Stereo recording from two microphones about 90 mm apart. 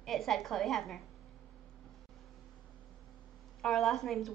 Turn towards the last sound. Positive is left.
turn(degrees=0)  # may be behind; listen again after turning